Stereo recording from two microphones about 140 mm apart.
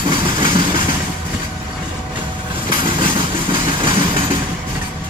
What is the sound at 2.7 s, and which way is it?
Train, 35° right (ahead or behind).